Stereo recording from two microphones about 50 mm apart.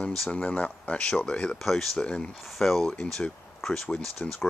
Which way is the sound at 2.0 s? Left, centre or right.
Centre.